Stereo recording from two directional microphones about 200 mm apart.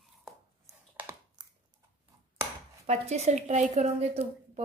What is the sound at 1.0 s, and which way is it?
Computer keyboard, 15° right (ahead or behind).